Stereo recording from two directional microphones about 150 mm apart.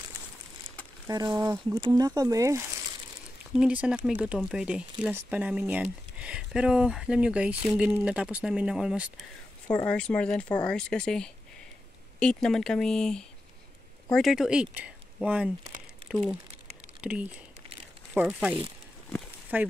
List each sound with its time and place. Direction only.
1.0 s speech: 25° right (ahead or behind)
3.5 s speech: 5° right (ahead or behind)
9.8 s speech: 5° left (ahead or behind); by 15.5 s 10° right (ahead or behind)
17.0 s speech: 10° right (ahead or behind)
19.5 s speech: 10° right (ahead or behind)